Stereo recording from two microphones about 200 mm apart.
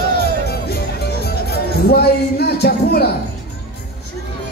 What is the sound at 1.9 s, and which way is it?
Music, 55° left (ahead or behind).